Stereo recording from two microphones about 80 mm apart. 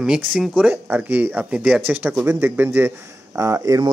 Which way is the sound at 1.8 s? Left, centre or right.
Right.